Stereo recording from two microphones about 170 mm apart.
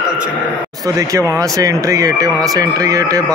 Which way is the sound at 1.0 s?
20° right (ahead or behind).